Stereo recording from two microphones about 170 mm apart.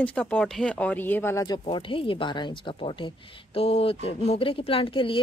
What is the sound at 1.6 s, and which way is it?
Speech, 30° left (ahead or behind).